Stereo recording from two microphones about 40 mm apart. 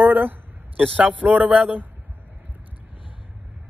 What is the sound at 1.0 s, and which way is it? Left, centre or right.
Speech, right.